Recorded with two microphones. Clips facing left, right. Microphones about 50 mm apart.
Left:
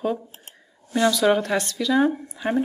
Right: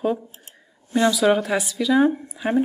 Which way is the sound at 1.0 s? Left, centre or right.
Centre.